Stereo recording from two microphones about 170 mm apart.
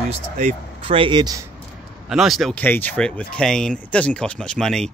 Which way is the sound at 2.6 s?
10° left (ahead or behind).